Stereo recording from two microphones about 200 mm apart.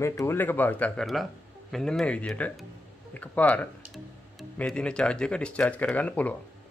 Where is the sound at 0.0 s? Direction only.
15° left (ahead or behind).